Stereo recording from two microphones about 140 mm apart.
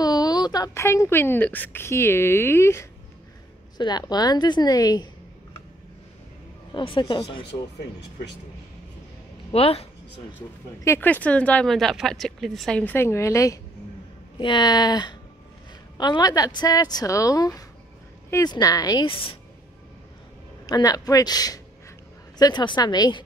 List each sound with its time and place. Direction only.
0.0 s a woman's voice: 30° left (ahead or behind)
3.7 s a woman's voice: 30° left (ahead or behind)
6.7 s a woman's voice: 35° left (ahead or behind)
9.5 s speech: 45° left (ahead or behind)
10.8 s a woman's voice: 15° left (ahead or behind)
14.4 s a woman's voice: 30° left (ahead or behind)
19.0 s a woman's voice: 40° left (ahead or behind)
20.6 s a woman's voice: 25° left (ahead or behind)